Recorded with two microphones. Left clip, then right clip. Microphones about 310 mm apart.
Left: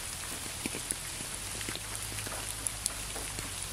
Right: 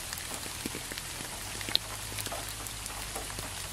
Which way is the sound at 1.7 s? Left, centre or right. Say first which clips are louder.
Right 11 dB; right.